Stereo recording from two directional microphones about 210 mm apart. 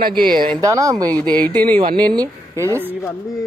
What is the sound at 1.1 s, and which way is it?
Speech, 5° left (ahead or behind).